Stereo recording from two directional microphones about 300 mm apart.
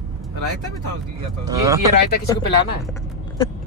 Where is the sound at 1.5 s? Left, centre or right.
Centre.